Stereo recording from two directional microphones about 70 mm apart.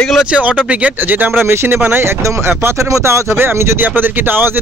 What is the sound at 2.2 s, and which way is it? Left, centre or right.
Speech, right.